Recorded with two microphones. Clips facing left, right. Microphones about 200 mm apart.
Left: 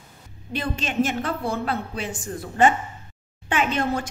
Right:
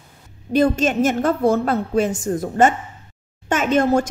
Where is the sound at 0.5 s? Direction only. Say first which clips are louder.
Right 8 dB; 45° right (ahead or behind).